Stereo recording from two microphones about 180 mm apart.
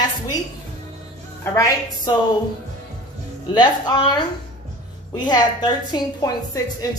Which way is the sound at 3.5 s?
25° left (ahead or behind).